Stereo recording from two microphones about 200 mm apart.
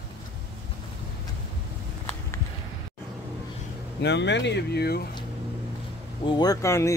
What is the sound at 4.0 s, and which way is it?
Speech, 60° left (ahead or behind).